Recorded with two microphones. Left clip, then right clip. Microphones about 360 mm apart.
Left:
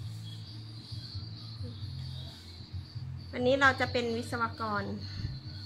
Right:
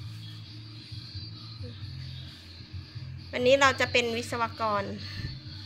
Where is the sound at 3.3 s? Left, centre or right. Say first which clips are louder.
Right 4 dB; centre.